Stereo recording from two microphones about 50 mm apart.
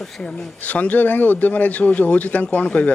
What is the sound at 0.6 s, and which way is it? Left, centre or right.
A man's voice, left.